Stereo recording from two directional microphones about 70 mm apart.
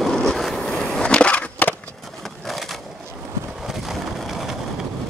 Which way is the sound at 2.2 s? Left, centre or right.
Centre.